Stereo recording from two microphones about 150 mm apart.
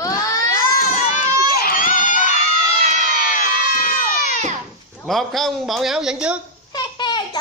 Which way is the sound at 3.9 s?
70° left (ahead or behind).